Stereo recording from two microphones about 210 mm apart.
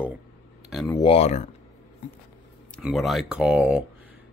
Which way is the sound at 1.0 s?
30° left (ahead or behind).